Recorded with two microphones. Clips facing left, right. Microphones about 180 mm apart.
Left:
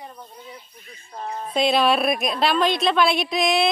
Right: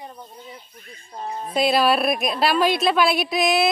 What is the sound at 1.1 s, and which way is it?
A woman's voice, 10° right (ahead or behind).